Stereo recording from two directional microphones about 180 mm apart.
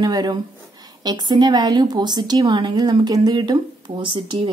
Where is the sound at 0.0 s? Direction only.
20° right (ahead or behind).